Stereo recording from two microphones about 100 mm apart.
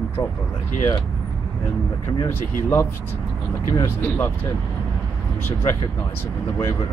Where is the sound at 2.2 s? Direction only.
25° left (ahead or behind).